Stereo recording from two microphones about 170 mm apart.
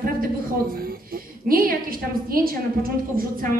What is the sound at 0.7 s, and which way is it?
A woman's voice, 60° right (ahead or behind).